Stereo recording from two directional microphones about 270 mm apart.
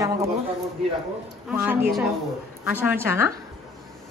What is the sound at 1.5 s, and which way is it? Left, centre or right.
A woman's voice, centre.